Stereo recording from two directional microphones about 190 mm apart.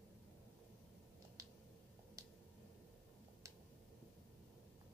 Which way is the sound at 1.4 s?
15° right (ahead or behind).